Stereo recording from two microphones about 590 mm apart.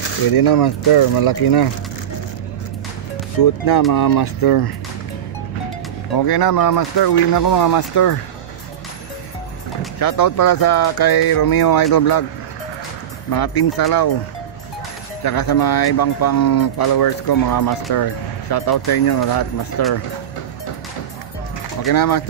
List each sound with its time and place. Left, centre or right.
0.3 s speech: left
3.9 s speech: left
6.1 s speech: left
9.9 s speech: left
13.3 s speech: left
15.2 s speech: left
21.8 s speech: left